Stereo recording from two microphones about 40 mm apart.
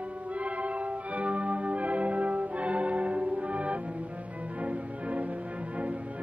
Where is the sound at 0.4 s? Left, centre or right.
Right.